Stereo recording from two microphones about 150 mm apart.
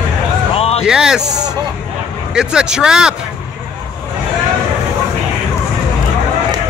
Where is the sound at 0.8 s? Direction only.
5° right (ahead or behind).